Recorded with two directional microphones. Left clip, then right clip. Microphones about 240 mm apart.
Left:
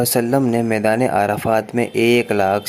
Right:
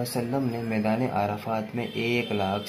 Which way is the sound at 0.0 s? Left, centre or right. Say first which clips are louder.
Left 12 dB; left.